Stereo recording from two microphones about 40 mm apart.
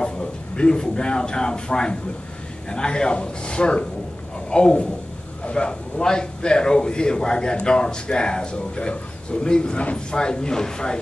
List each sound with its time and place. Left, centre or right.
0.0 s a man's voice: left